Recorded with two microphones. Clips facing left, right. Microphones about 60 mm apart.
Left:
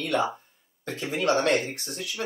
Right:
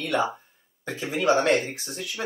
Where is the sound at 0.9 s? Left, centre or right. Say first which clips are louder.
Right 2 dB; centre.